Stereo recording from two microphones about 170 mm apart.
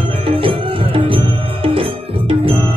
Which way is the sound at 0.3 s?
30° right (ahead or behind).